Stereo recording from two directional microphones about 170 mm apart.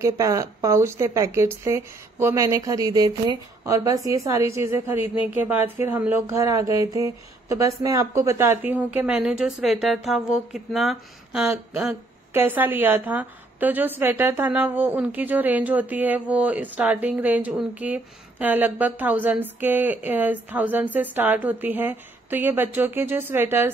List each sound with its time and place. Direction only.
0.0 s speech: 20° right (ahead or behind)